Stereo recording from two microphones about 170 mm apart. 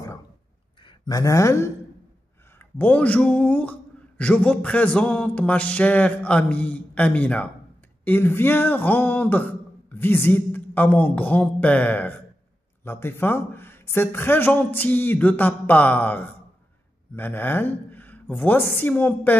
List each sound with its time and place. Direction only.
0.8 s a man's voice: 20° left (ahead or behind)